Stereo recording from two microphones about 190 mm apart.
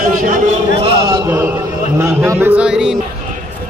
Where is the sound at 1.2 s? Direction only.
10° right (ahead or behind).